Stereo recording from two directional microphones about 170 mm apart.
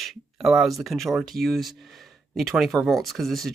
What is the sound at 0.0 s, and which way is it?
Speech, centre (ahead or behind).